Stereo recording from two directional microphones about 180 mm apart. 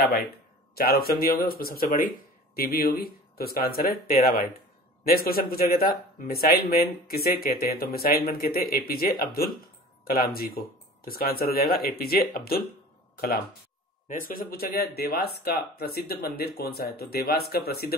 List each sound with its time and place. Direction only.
0.7 s speech: 60° left (ahead or behind)
14.0 s speech: 50° left (ahead or behind)